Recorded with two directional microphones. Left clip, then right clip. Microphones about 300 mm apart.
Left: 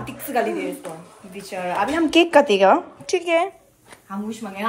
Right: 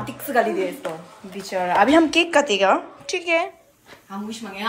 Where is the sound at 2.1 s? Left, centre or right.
Centre.